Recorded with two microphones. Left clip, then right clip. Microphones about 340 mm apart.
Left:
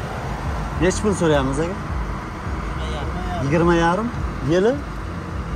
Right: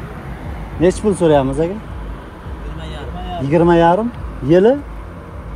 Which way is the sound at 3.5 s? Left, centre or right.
Centre.